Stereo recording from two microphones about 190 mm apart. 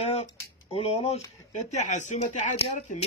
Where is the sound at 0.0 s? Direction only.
35° left (ahead or behind).